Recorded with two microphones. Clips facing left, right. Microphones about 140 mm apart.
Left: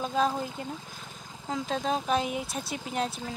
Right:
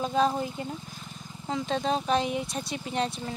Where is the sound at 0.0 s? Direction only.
Centre (ahead or behind).